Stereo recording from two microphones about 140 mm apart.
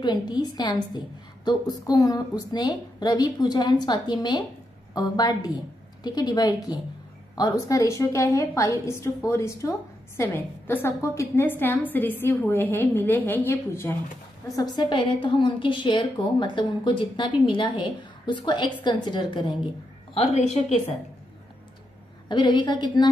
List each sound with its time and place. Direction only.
0.0 s a woman's voice: 30° left (ahead or behind); by 13.9 s 15° left (ahead or behind)
14.5 s a woman's voice: 30° left (ahead or behind)
22.3 s a woman's voice: 35° left (ahead or behind)